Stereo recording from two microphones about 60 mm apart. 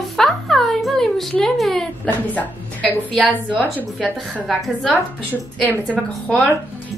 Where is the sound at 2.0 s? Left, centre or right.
Left.